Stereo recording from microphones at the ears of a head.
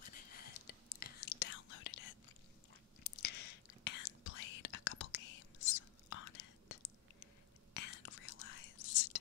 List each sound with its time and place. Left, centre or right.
0.0 s whispering: left